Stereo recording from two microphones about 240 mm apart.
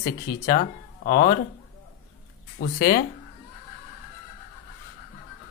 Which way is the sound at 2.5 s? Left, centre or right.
Left.